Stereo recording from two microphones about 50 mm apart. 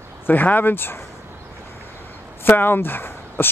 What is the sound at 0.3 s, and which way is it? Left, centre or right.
Speech, left.